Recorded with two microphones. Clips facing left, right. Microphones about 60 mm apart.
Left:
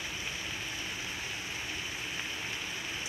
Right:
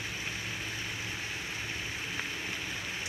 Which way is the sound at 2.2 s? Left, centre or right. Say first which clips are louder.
Right 3 dB; right.